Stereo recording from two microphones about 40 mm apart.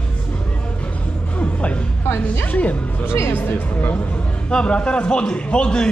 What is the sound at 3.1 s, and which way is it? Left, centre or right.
Speech, left.